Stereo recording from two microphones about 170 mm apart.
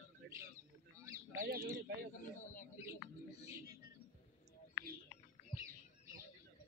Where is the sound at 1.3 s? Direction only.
55° right (ahead or behind).